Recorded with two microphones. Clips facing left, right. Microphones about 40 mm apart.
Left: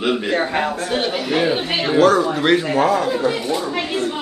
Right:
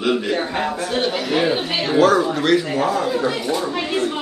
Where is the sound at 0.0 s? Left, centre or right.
Centre.